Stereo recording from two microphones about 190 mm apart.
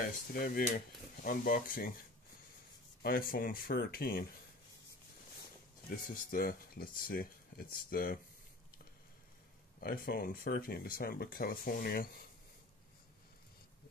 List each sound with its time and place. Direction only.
0.0 s speech: 50° left (ahead or behind)
3.0 s speech: 50° left (ahead or behind)
5.9 s speech: 50° left (ahead or behind)
9.8 s speech: 50° left (ahead or behind)